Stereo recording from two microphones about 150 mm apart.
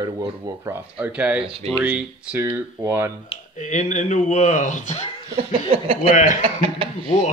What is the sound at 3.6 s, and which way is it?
Speech, 55° left (ahead or behind).